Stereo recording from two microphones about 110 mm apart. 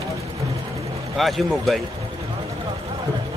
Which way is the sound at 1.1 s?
Centre (ahead or behind).